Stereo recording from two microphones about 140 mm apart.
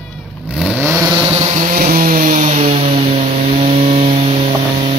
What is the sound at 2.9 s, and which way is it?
Vehicle, 50° right (ahead or behind).